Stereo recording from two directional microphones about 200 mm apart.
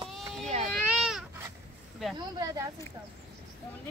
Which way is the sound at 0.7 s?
Centre (ahead or behind).